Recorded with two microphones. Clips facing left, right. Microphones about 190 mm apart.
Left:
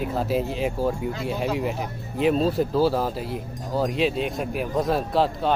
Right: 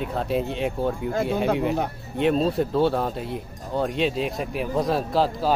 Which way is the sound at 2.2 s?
Centre (ahead or behind).